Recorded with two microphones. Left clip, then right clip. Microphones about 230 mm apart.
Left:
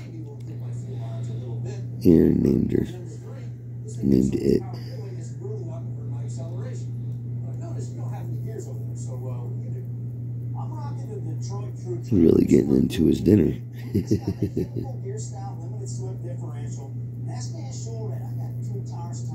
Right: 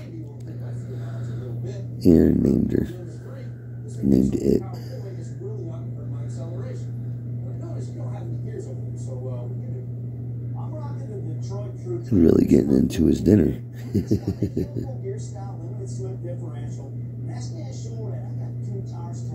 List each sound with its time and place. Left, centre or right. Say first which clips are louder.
2.0 s speech: right 1 dB; centre
4.1 s speech: right 1 dB; centre
12.1 s speech: right 1 dB; centre